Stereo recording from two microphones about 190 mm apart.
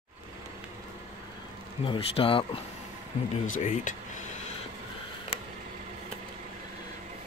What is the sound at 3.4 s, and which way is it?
Speech, 45° left (ahead or behind).